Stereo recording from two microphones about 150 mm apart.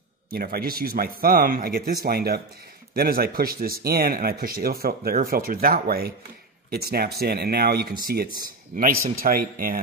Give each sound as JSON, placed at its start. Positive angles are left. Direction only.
{"t": 0.3, "sound": "speech", "side_deg": -85}
{"t": 2.0, "sound": "speech", "side_deg": -90}
{"t": 9.2, "sound": "speech", "side_deg": -75}